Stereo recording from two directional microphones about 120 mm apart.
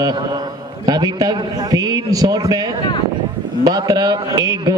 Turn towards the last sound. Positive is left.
turn(degrees=-35)  # may be behind; listen again after turning